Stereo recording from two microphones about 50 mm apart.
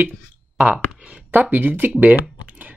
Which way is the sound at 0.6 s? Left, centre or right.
Right.